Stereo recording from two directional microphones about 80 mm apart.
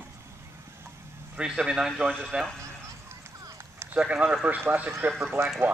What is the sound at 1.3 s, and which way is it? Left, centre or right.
Speech, centre.